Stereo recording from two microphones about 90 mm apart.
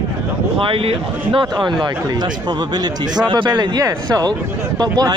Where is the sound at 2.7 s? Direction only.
50° right (ahead or behind).